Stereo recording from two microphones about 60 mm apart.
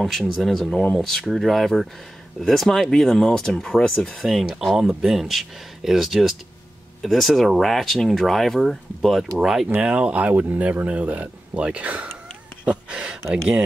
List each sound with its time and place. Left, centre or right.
0.0 s speech: centre
9.8 s speech: centre
12.6 s a sound: centre